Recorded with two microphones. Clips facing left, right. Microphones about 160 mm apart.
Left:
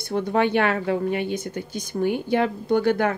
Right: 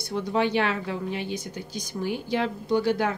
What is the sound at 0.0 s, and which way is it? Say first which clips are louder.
Speech: left 4 dB; 55° left (ahead or behind).